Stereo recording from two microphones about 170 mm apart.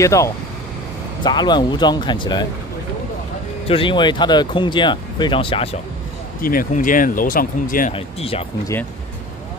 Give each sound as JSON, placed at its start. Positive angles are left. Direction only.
{"t": 0.0, "sound": "speech", "side_deg": 20}
{"t": 3.6, "sound": "speech", "side_deg": 30}
{"t": 6.4, "sound": "speech", "side_deg": 55}
{"t": 7.9, "sound": "speech", "side_deg": 35}